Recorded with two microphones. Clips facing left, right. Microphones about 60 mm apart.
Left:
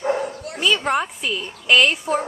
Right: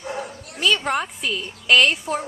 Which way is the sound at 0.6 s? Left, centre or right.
Centre.